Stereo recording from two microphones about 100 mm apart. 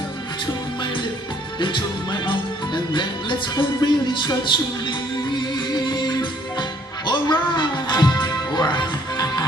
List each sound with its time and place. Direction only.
1.6 s music: 55° left (ahead or behind)